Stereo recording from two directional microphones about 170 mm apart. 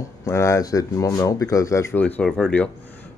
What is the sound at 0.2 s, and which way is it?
Speech, 15° left (ahead or behind).